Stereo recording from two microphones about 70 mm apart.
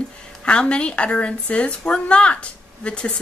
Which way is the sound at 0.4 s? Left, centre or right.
Centre.